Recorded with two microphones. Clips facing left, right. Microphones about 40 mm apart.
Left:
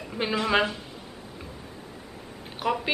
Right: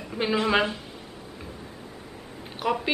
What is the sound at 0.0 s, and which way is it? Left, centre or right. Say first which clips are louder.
Speech: right 2 dB; centre.